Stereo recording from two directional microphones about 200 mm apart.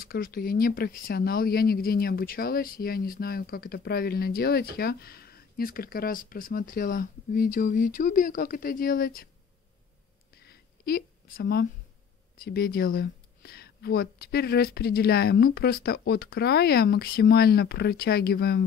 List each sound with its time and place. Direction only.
0.0 s speech: 50° left (ahead or behind)
10.3 s a sound: 50° left (ahead or behind)
12.4 s speech: 50° left (ahead or behind)